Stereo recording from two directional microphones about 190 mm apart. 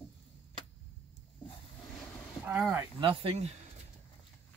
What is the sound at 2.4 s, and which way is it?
Speech, 10° right (ahead or behind).